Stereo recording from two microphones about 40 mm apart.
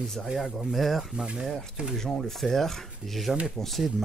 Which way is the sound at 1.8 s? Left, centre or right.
Right.